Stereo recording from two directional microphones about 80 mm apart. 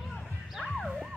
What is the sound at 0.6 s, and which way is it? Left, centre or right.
Music, centre.